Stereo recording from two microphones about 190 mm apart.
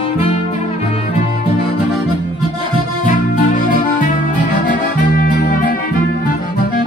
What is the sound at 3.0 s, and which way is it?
Music, 45° left (ahead or behind).